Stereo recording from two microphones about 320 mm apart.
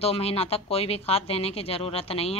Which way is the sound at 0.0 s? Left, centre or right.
Centre.